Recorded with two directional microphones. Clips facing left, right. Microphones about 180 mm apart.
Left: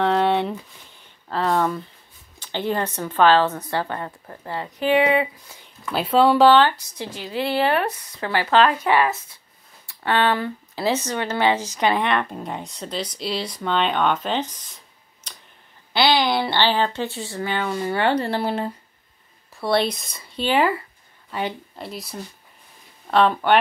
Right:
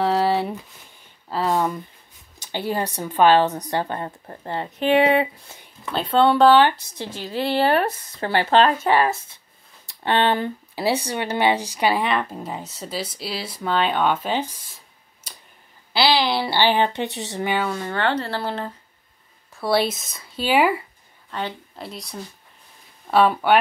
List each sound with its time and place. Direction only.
0.0 s a sound: 5° right (ahead or behind)
1.5 s a woman's voice: 15° right (ahead or behind)
5.9 s speech: 5° left (ahead or behind)
7.3 s speech: 35° right (ahead or behind)
9.8 s speech: 25° right (ahead or behind)
10.7 s speech: 10° right (ahead or behind)
15.3 s a sound: 5° right (ahead or behind)
15.9 s speech: 5° right (ahead or behind); by 17.6 s 20° right (ahead or behind)
17.7 s speech: 10° left (ahead or behind)
19.5 s speech: 5° right (ahead or behind)
21.3 s speech: 10° left (ahead or behind)
21.7 s speech: centre (ahead or behind)